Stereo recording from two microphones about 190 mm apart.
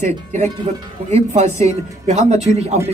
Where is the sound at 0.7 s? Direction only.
40° right (ahead or behind).